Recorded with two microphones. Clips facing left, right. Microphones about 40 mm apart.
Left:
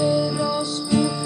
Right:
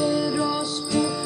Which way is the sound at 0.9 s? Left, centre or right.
Centre.